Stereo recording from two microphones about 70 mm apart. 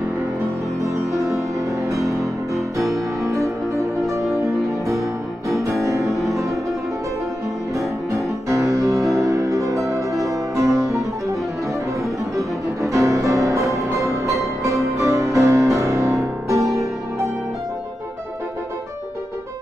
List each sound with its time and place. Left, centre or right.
0.7 s music: right
3.2 s music: centre
4.9 s music: centre
5.6 s music: right
6.2 s music: centre
7.7 s music: right
12.4 s music: right